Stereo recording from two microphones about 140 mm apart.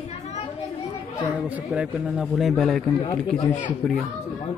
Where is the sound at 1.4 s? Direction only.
10° right (ahead or behind).